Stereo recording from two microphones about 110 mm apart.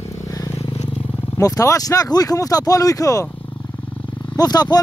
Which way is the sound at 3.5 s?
45° left (ahead or behind).